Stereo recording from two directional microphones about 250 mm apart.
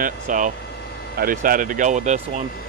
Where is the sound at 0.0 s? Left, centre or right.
Right.